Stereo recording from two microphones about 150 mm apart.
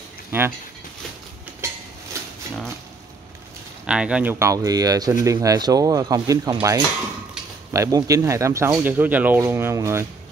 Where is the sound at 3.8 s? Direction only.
5° right (ahead or behind).